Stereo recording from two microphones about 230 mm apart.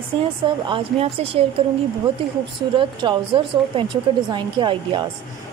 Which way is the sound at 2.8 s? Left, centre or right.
Right.